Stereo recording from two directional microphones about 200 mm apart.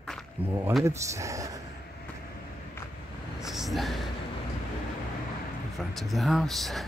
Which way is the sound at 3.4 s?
Centre (ahead or behind).